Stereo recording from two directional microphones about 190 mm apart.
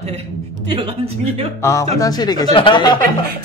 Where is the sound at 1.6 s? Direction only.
15° left (ahead or behind).